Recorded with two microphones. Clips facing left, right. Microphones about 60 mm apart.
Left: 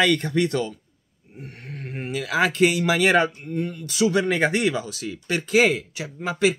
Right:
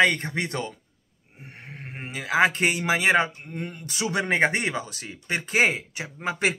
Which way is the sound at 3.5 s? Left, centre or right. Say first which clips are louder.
Left 6 dB; right.